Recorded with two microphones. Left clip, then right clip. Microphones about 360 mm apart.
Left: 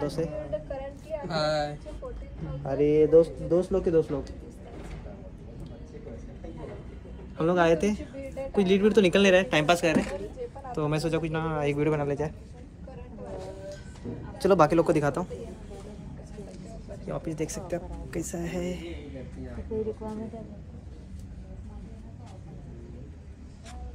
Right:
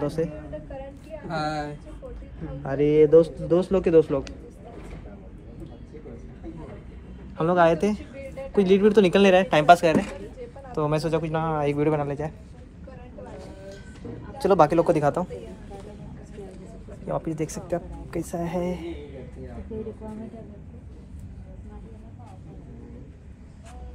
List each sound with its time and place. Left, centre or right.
0.0 s speech: centre
1.3 s a man's voice: centre
2.6 s a woman's voice: right
7.3 s a man's voice: centre
14.4 s a man's voice: centre
17.4 s a woman's voice: centre